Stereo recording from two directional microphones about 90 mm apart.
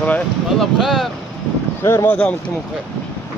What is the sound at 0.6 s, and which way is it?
Speech, 5° right (ahead or behind).